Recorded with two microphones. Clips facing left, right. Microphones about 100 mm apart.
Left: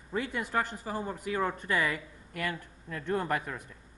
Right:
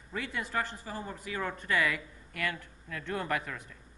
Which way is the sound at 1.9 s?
35° left (ahead or behind).